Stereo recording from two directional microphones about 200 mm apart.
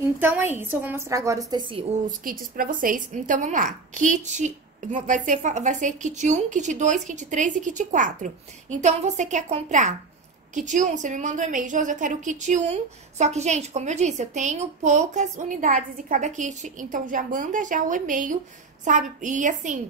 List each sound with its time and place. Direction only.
0.2 s a woman's voice: 10° right (ahead or behind)
2.0 s a woman's voice: 45° right (ahead or behind)